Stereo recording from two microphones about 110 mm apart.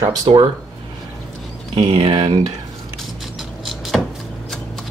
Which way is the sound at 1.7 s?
50° right (ahead or behind).